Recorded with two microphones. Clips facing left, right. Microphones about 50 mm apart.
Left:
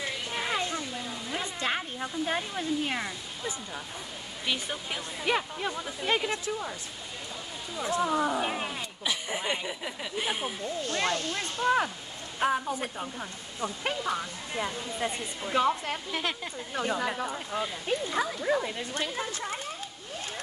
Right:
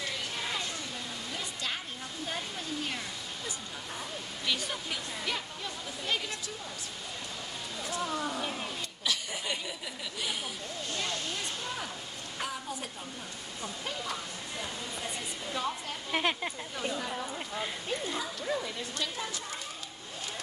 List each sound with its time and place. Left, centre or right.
0.0 s a sound: left
4.5 s speech: left
5.3 s speech: left
7.7 s speech: left
9.0 s speech: left
10.9 s speech: left
12.4 s speech: left
16.1 s speech: centre
16.7 s speech: left
17.1 s speech: left
18.4 s speech: left